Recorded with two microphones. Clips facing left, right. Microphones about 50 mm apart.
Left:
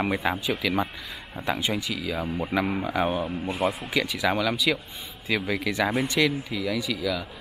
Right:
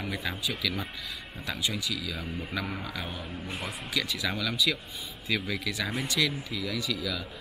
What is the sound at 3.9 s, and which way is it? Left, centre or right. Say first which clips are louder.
Speech: left 6 dB; centre.